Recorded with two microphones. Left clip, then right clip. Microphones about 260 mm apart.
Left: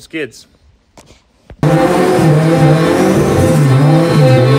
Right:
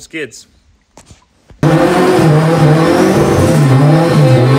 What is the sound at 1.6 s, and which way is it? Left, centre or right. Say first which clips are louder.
Vehicle: right 1 dB; centre.